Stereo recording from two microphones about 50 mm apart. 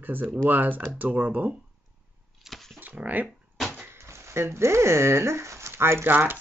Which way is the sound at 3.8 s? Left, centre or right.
Right.